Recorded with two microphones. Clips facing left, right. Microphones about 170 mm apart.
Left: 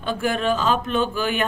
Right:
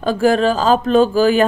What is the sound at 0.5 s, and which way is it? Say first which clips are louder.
Speech: right 8 dB; 35° right (ahead or behind).